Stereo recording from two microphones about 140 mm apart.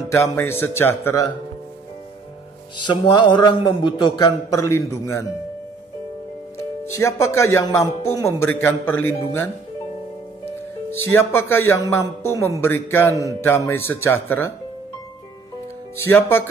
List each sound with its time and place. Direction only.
0.1 s speech: 15° left (ahead or behind)
2.8 s a man's voice: 35° left (ahead or behind)
7.0 s speech: 20° left (ahead or behind)
11.1 s speech: 15° left (ahead or behind)
16.0 s speech: 15° left (ahead or behind)